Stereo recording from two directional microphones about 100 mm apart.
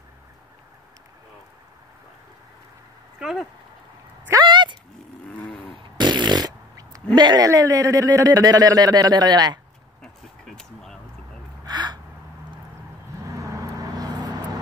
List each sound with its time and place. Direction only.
3.2 s speech: 5° right (ahead or behind)
4.3 s a sound: 45° right (ahead or behind)
5.9 s fart: 50° right (ahead or behind)
7.2 s a man's voice: 45° right (ahead or behind)
10.0 s a sound: 5° left (ahead or behind)
11.6 s gasp: 45° right (ahead or behind)
13.4 s vehicle: 35° right (ahead or behind)